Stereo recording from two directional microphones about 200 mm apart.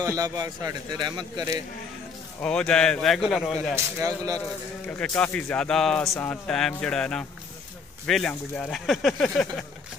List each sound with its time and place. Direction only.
0.0 s a man's voice: 20° right (ahead or behind)
2.4 s speech: 5° left (ahead or behind)
3.7 s a man's voice: 15° right (ahead or behind)
4.8 s speech: 5° left (ahead or behind)